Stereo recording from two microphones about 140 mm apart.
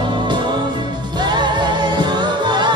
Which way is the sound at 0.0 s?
35° right (ahead or behind).